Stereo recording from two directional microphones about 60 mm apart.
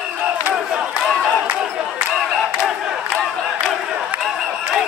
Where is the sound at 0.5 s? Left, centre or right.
Centre.